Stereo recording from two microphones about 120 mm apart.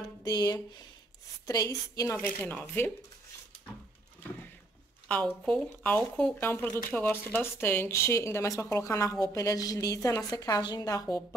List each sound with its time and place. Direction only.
0.3 s speech: 35° left (ahead or behind)
2.1 s speech: 10° left (ahead or behind)
4.2 s a sound: 15° left (ahead or behind)
5.0 s speech: 10° left (ahead or behind); by 11.2 s 30° left (ahead or behind)